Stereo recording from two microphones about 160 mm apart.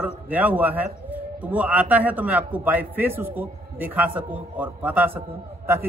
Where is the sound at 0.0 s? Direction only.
10° right (ahead or behind).